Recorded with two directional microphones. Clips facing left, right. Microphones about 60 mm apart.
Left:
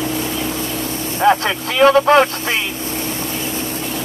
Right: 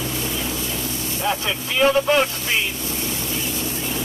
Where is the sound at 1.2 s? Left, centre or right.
Left.